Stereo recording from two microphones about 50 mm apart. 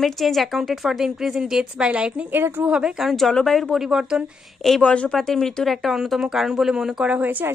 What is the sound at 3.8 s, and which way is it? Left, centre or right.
Speech, centre.